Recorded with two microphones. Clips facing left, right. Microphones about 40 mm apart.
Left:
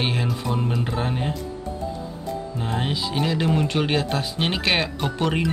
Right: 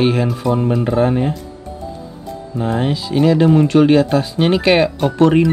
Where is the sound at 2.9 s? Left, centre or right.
Centre.